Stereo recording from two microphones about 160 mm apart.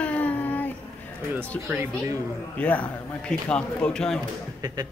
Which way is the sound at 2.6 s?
10° left (ahead or behind).